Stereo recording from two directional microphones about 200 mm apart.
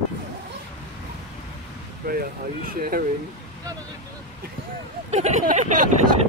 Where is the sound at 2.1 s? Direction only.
50° right (ahead or behind).